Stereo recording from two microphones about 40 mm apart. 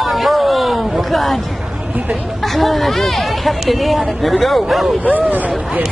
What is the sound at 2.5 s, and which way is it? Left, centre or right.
Speech, centre.